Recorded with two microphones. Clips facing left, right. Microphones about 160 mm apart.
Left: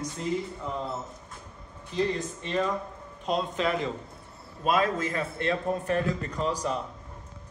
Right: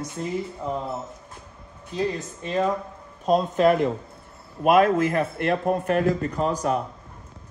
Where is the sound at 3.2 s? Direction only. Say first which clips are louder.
Right 9 dB; 45° right (ahead or behind).